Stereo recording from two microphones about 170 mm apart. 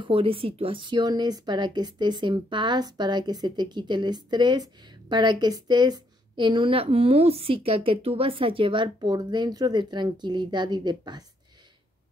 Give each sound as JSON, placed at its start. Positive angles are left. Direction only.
{"t": 0.0, "sound": "a woman's voice", "side_deg": -35}